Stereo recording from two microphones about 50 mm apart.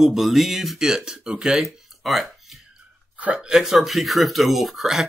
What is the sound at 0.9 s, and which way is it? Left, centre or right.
Speech, centre.